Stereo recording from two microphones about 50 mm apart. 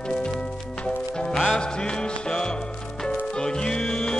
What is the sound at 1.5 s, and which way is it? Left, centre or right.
Music, centre.